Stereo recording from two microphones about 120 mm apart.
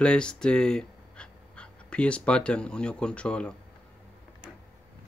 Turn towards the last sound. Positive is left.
turn(degrees=10)  # may be behind; listen again after turning